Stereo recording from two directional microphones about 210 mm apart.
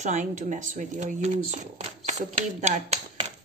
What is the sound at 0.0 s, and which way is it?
A woman's voice, 35° right (ahead or behind).